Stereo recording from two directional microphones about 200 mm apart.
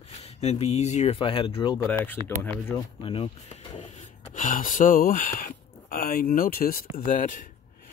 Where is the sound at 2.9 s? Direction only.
25° left (ahead or behind).